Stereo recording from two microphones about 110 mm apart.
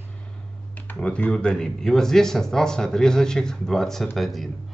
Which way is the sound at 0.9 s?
10° left (ahead or behind).